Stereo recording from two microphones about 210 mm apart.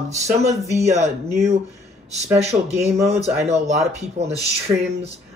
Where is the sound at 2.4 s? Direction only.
30° right (ahead or behind).